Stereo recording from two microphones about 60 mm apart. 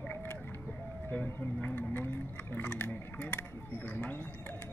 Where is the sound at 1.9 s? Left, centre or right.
Left.